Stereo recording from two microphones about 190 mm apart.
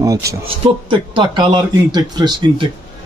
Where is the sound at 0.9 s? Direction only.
25° right (ahead or behind).